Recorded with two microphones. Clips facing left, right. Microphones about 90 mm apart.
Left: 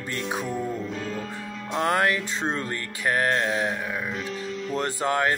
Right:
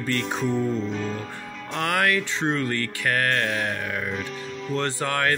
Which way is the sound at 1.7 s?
25° left (ahead or behind).